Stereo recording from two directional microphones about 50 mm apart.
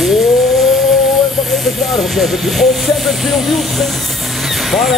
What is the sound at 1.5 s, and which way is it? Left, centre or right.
Speech, centre.